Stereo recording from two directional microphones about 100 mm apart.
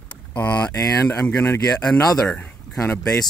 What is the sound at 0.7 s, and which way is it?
Speech, 30° left (ahead or behind).